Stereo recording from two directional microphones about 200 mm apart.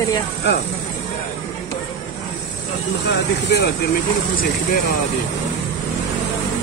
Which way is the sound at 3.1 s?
55° left (ahead or behind).